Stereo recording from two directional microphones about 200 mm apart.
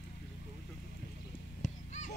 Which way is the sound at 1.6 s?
35° left (ahead or behind).